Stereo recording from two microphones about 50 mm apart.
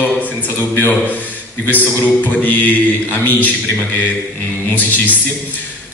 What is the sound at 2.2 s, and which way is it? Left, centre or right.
Mantra, left.